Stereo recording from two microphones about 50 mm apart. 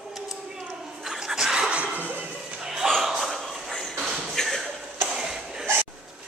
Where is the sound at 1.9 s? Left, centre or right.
Right.